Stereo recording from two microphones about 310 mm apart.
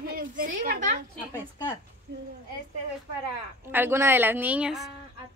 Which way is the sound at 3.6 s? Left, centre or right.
Centre.